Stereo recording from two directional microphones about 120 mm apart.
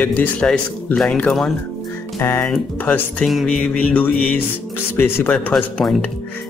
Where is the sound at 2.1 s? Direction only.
20° left (ahead or behind).